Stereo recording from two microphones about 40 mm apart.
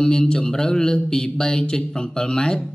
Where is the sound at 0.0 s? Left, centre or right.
Centre.